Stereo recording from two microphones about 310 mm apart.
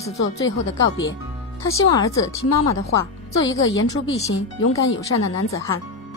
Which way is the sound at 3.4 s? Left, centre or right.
Left.